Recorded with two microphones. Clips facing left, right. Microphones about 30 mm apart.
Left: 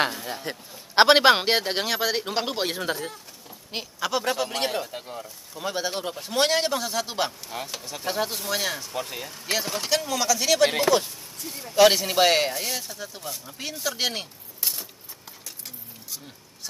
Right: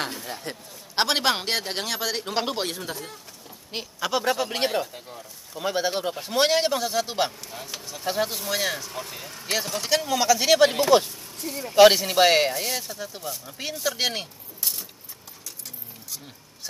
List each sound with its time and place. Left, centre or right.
0.1 s a man's voice: centre
0.9 s a man's voice: left; by 2.7 s centre
2.7 s speech: left
3.1 s speech: centre
4.5 s speech: centre
4.9 s speech: left
5.5 s a man's voice: centre
9.8 s speech: centre
11.9 s a man's voice: centre
14.6 s typewriter: centre